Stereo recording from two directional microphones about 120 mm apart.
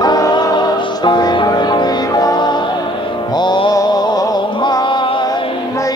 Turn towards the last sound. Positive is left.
turn(degrees=40)  # may be behind; listen again after turning